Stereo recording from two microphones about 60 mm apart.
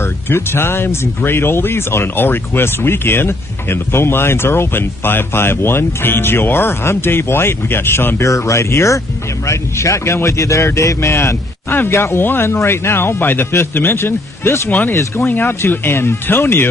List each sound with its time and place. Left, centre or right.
0.0 s speech: left
8.2 s speech: left
14.7 s speech: left